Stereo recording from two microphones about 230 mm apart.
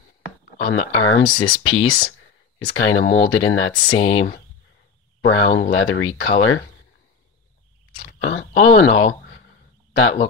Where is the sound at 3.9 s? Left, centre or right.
Left.